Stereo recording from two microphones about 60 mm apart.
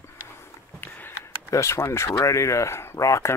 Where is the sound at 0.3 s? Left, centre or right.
Left.